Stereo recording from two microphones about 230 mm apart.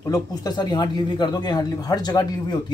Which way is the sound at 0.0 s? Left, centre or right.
Centre.